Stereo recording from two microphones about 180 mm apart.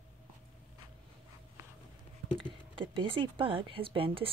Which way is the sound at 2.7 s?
30° right (ahead or behind).